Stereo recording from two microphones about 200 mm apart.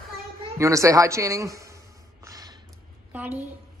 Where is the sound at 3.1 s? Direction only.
10° right (ahead or behind).